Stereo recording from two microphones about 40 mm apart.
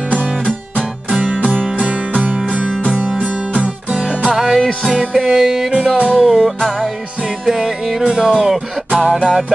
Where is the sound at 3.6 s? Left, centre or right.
Right.